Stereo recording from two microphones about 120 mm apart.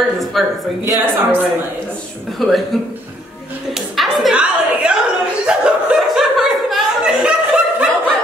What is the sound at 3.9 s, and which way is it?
Music, centre (ahead or behind).